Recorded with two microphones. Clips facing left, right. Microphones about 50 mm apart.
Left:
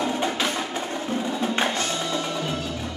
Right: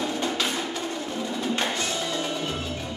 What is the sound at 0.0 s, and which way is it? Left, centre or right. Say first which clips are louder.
Music: left 2 dB; left.